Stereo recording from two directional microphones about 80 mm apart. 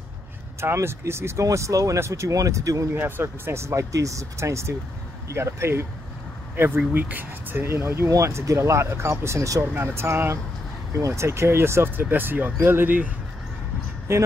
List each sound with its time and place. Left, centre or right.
0.6 s speech: right
2.9 s speech: right
14.1 s speech: right